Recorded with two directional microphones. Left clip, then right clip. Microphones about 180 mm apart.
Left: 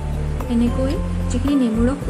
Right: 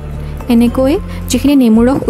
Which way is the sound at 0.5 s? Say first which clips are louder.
Right 11 dB; 60° right (ahead or behind).